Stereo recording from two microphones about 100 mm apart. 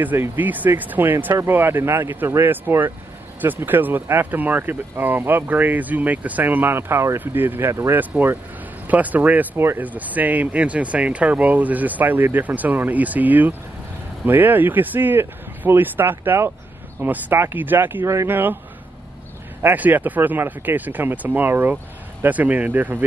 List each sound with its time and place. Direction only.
0.0 s speech: 20° right (ahead or behind)
19.6 s speech: 15° right (ahead or behind)